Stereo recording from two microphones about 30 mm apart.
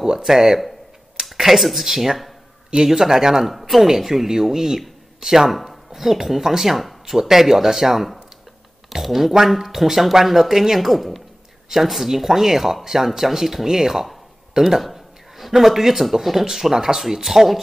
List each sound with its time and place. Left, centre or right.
0.2 s speech: centre
5.5 s speech: centre
14.8 s a sound: centre
15.5 s speech: centre